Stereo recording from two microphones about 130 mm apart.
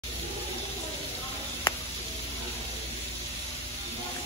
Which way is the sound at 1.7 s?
35° left (ahead or behind).